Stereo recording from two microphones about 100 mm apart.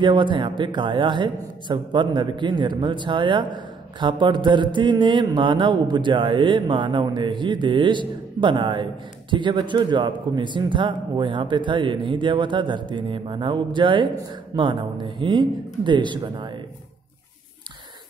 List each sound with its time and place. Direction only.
0.0 s a man's voice: 50° right (ahead or behind)